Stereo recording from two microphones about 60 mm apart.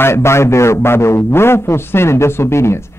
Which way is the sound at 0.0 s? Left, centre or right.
Left.